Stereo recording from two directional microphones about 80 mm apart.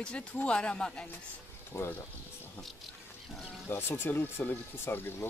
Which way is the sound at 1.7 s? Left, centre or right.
Left.